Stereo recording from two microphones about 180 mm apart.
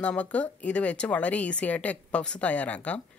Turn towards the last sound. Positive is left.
turn(degrees=5)  # may be behind; listen again after turning